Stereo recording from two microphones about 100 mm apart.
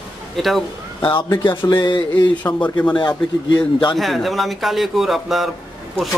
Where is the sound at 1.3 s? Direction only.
55° left (ahead or behind).